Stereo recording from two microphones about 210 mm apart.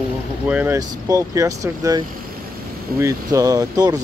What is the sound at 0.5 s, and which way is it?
Speech, 5° right (ahead or behind).